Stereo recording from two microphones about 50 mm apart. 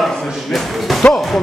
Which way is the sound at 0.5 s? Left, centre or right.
Centre.